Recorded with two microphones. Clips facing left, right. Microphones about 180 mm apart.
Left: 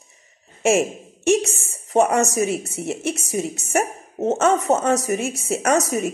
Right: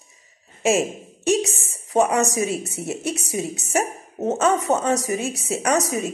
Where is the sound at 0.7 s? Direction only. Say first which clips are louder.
Left 2 dB; centre (ahead or behind).